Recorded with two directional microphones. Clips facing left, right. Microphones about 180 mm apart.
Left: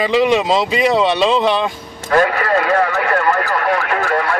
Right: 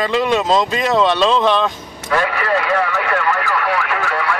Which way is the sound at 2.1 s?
45° left (ahead or behind).